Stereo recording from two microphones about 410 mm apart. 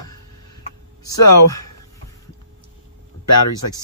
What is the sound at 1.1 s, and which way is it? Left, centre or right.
Speech, left.